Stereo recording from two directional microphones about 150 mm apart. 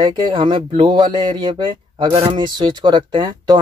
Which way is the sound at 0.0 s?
30° right (ahead or behind).